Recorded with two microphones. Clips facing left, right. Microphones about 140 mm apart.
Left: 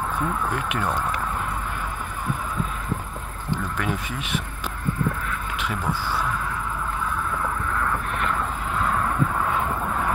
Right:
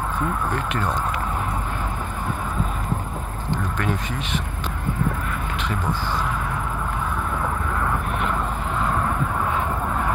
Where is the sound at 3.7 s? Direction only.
10° left (ahead or behind).